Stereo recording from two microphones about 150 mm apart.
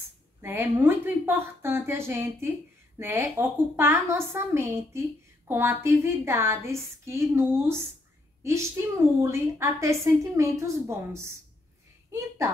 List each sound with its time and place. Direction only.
0.4 s a woman's voice: 15° right (ahead or behind)